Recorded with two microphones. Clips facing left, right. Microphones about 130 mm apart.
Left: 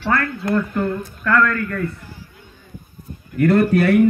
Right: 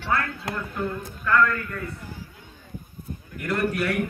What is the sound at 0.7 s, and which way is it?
Speech, 90° left.